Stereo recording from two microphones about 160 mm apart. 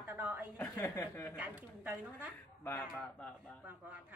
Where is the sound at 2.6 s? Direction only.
10° left (ahead or behind).